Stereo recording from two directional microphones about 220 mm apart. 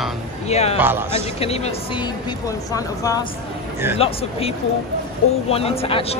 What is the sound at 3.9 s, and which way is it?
Speech, 25° left (ahead or behind).